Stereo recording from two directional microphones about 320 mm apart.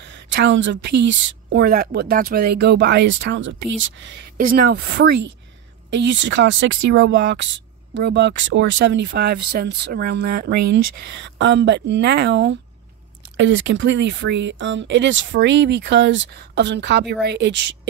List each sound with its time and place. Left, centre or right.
0.0 s speech: right